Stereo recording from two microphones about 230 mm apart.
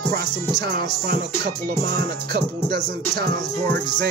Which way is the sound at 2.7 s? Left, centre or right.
Centre.